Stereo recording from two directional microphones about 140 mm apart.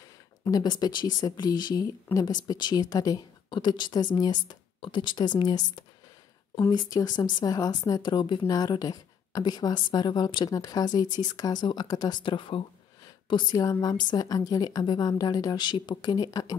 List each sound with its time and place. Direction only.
0.5 s speech: 30° left (ahead or behind)
2.1 s speech: 15° left (ahead or behind)
2.4 s a woman's voice: 30° left (ahead or behind)